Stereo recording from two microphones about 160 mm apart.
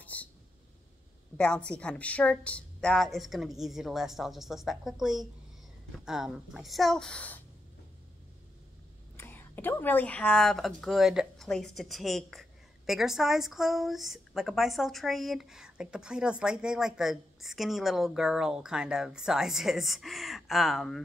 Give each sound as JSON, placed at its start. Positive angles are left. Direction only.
{"t": 0.0, "sound": "a sound", "side_deg": 10}
{"t": 1.4, "sound": "speech", "side_deg": 5}
{"t": 9.1, "sound": "speech", "side_deg": 15}